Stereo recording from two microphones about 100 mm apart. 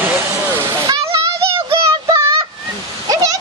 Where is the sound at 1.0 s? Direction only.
25° right (ahead or behind).